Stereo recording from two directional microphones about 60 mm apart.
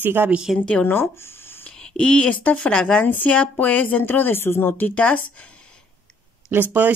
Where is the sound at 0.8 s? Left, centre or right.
Left.